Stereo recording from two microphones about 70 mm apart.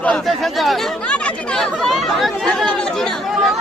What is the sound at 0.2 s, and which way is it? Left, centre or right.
Speech, centre.